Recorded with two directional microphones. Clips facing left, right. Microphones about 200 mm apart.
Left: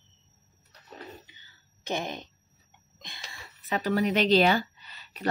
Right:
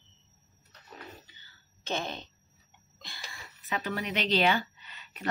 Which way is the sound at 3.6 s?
40° left (ahead or behind).